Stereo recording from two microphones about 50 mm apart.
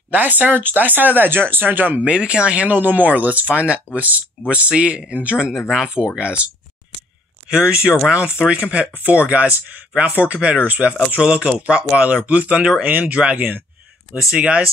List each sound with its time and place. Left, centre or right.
0.1 s speech: right
2.0 s speech: centre
14.1 s speech: centre